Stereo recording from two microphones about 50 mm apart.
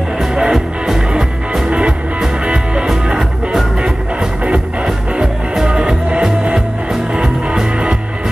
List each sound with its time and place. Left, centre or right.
0.2 s music: centre
1.7 s music: right